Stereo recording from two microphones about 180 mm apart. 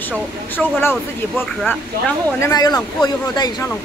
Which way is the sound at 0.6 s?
5° left (ahead or behind).